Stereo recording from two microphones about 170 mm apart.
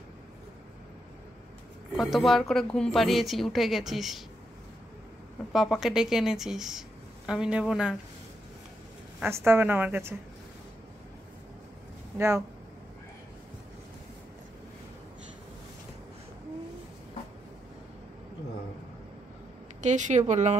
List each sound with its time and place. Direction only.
2.0 s a woman's voice: centre (ahead or behind)
5.5 s a woman's voice: centre (ahead or behind)
9.3 s a woman's voice: 15° right (ahead or behind)
19.8 s speech: 45° right (ahead or behind)